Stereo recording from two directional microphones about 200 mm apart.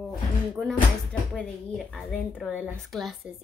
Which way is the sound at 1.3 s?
5° left (ahead or behind).